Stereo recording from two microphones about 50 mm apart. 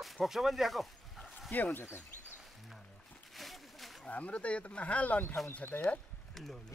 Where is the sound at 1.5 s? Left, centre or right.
Left.